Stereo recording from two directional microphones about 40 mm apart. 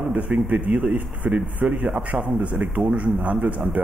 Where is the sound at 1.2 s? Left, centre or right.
Right.